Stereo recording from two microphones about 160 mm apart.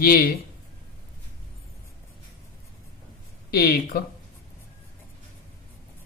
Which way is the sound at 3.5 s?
70° left (ahead or behind).